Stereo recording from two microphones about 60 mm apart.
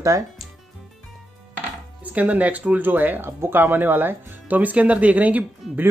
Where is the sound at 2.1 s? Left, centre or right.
Right.